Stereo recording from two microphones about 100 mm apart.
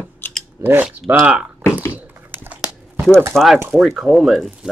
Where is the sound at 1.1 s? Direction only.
15° right (ahead or behind).